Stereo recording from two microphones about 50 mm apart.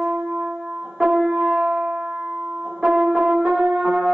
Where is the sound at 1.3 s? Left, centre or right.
Centre.